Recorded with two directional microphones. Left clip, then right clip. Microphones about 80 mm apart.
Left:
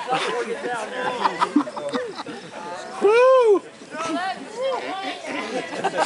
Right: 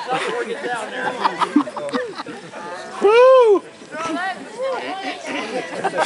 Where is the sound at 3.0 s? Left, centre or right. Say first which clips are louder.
Right 4 dB; right.